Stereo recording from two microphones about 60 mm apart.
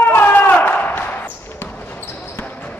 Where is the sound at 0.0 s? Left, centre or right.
Left.